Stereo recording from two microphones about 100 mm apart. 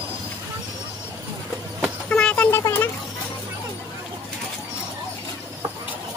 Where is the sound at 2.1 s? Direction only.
10° left (ahead or behind).